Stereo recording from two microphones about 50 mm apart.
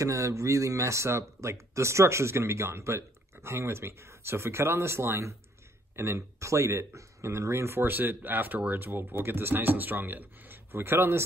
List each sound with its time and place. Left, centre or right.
0.0 s speech: right
7.9 s speech: right